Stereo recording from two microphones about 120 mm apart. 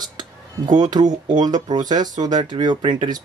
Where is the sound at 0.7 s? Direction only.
35° right (ahead or behind).